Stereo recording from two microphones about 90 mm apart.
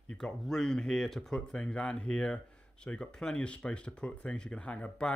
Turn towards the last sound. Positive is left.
turn(degrees=15)  # may be behind; listen again after turning